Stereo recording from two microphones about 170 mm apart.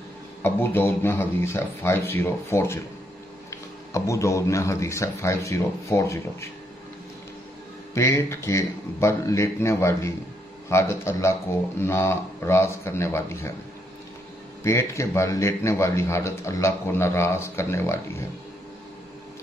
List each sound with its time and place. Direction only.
0.4 s a man's voice: 15° left (ahead or behind)
7.9 s a man's voice: 15° left (ahead or behind)
14.6 s a man's voice: 15° left (ahead or behind)